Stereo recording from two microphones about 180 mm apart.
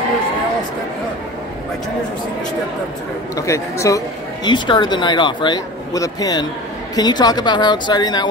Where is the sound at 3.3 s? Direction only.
15° left (ahead or behind).